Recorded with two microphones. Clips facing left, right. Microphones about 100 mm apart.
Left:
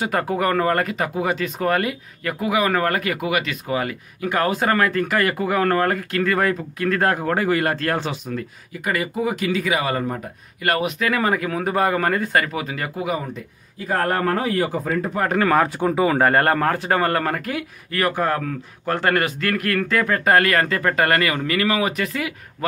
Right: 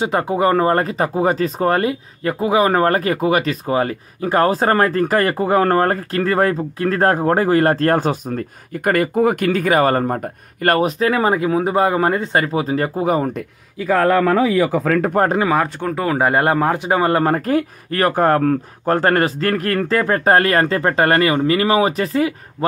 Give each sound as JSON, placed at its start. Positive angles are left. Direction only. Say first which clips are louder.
{"t": 0.0, "sound": "speech", "louder": "right 4 dB", "side_deg": -25}
{"t": 14.9, "sound": "speech", "louder": "right 6 dB", "side_deg": -60}
{"t": 15.8, "sound": "speech", "louder": "left 1 dB", "side_deg": 5}
{"t": 16.2, "sound": "speech", "louder": "right 1 dB", "side_deg": -15}
{"t": 17.5, "sound": "speech", "louder": "right 9 dB", "side_deg": -40}